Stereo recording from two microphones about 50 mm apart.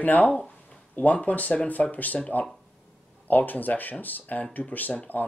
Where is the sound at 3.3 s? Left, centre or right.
Left.